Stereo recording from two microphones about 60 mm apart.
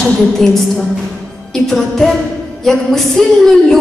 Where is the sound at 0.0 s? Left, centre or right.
Centre.